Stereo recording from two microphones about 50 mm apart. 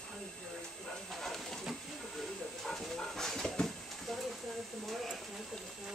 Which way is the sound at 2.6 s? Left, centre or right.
Centre.